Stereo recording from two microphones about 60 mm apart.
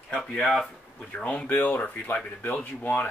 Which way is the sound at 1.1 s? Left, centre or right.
Centre.